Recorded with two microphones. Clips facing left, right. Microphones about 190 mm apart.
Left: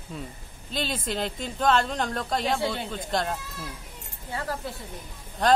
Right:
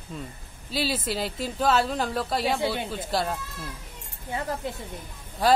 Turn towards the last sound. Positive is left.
turn(degrees=-5)  # may be behind; listen again after turning